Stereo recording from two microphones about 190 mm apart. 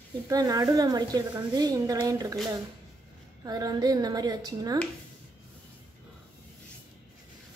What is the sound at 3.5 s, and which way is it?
A woman's voice, 20° right (ahead or behind).